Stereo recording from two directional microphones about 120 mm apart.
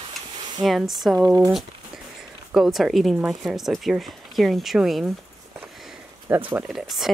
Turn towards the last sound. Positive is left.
turn(degrees=0)  # may be behind; listen again after turning